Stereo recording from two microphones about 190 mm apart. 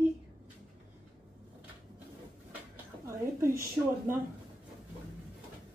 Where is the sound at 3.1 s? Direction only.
15° right (ahead or behind).